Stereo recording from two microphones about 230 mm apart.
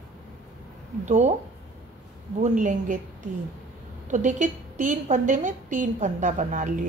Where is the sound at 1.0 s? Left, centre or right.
Right.